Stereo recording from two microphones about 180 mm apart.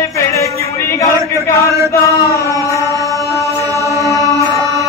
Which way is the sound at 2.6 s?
15° left (ahead or behind).